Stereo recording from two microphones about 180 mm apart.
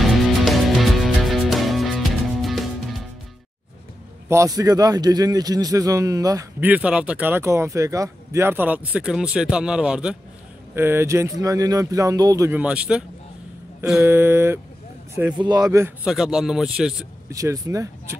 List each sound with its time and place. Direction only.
0.0 s music: centre (ahead or behind)
4.3 s a man's voice: 20° right (ahead or behind)
6.7 s speech: 5° right (ahead or behind)
15.3 s a man's voice: 25° right (ahead or behind)
16.1 s a man's voice: 5° right (ahead or behind)
17.3 s speech: 15° right (ahead or behind)